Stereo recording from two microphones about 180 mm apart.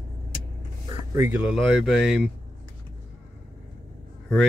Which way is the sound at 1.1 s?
10° right (ahead or behind).